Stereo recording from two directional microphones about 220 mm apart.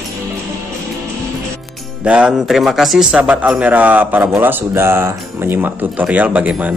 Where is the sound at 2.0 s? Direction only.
5° right (ahead or behind).